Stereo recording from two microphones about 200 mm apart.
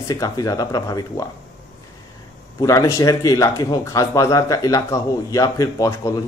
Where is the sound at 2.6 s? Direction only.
15° left (ahead or behind).